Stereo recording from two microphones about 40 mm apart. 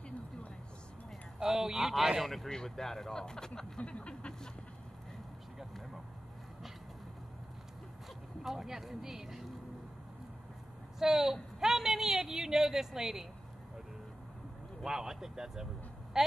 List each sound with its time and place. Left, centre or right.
1.4 s speech: centre
2.2 s speech: centre
3.8 s a sound: left
4.1 s speech: centre
8.4 s speech: centre
11.0 s speech: centre
14.9 s a man's voice: centre